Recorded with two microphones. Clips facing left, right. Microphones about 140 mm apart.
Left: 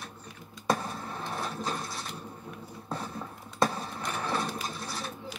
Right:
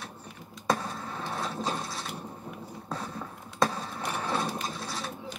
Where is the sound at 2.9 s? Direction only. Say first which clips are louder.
Left 1 dB; centre (ahead or behind).